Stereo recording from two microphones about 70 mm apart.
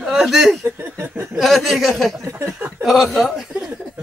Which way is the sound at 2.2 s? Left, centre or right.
Right.